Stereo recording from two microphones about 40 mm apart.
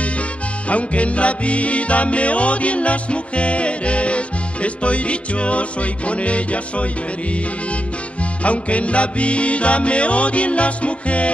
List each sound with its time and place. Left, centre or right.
0.7 s music: left
8.5 s music: left